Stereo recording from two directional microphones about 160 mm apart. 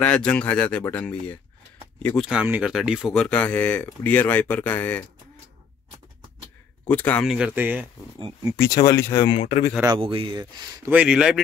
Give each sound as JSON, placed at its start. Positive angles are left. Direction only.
{"t": 0.0, "sound": "speech", "side_deg": 5}
{"t": 2.2, "sound": "speech", "side_deg": -10}
{"t": 6.9, "sound": "speech", "side_deg": 10}
{"t": 7.2, "sound": "speech", "side_deg": -5}
{"t": 8.5, "sound": "speech", "side_deg": 20}
{"t": 9.3, "sound": "speech", "side_deg": 45}
{"t": 9.8, "sound": "speech", "side_deg": -35}
{"t": 10.9, "sound": "speech", "side_deg": -5}